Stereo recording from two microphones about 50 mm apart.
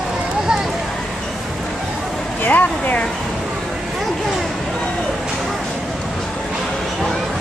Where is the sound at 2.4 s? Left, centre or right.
Left.